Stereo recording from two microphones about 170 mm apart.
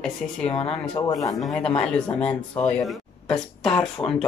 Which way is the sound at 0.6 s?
35° left (ahead or behind).